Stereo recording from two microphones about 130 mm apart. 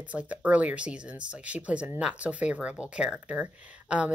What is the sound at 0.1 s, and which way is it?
A woman's voice, 10° right (ahead or behind).